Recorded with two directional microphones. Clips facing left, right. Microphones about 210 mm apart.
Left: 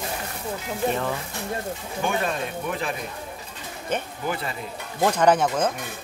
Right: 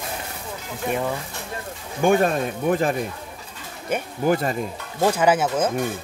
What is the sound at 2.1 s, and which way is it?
Speech, 45° right (ahead or behind).